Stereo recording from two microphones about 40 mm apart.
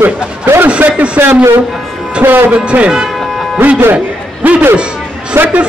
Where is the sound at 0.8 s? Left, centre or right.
Right.